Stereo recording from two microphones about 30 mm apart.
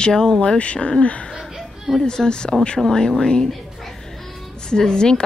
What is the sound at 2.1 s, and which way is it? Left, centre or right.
Speech, left.